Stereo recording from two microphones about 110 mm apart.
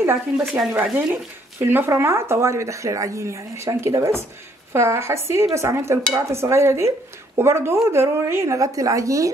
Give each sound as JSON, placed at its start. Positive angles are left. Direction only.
{"t": 0.0, "sound": "speech", "side_deg": -25}
{"t": 0.5, "sound": "speech", "side_deg": -5}